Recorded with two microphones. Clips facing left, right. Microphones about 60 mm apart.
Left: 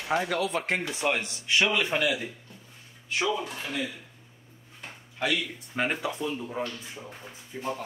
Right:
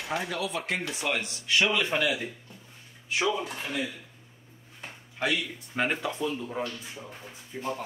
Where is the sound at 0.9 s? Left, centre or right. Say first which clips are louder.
Left 2 dB; left.